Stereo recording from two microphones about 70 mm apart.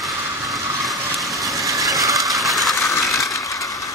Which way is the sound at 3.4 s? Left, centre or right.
Left.